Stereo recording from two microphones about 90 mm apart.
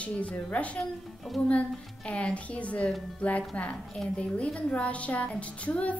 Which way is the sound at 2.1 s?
15° left (ahead or behind).